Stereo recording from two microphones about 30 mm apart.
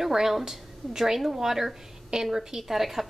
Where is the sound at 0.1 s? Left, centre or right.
Centre.